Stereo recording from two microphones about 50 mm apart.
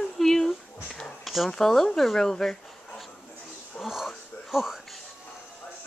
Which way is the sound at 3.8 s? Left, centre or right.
Centre.